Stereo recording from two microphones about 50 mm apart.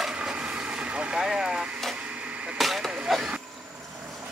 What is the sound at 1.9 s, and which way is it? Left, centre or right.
Printer, right.